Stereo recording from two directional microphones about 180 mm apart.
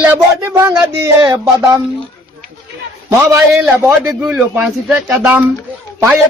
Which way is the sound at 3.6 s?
5° right (ahead or behind).